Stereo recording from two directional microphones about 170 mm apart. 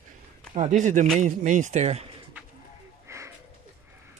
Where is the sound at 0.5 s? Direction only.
45° right (ahead or behind).